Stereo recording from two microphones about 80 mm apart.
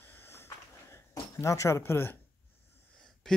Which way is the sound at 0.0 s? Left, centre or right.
Left.